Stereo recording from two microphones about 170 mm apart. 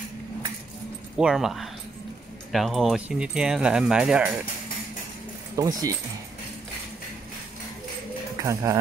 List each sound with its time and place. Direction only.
1.1 s speech: 5° right (ahead or behind)
5.6 s speech: 20° right (ahead or behind)
8.4 s speech: 15° right (ahead or behind)